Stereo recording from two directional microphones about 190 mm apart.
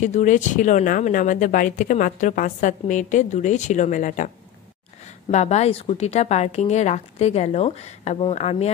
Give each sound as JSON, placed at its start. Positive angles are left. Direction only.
{"t": 0.0, "sound": "a woman's voice", "side_deg": 40}
{"t": 5.3, "sound": "a woman's voice", "side_deg": 35}